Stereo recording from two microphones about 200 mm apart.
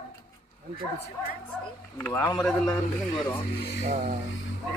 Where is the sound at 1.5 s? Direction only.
10° left (ahead or behind).